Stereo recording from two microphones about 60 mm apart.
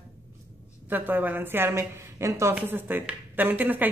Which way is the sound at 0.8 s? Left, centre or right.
Right.